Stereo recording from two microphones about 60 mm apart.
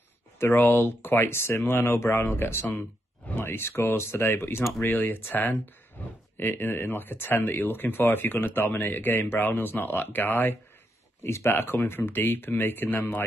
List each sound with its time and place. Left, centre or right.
0.4 s speech: left
6.0 s a sound: left
6.3 s speech: left
11.2 s speech: left